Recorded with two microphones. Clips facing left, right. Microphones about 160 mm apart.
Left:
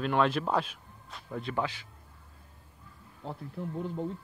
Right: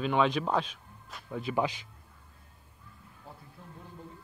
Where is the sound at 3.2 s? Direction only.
80° left.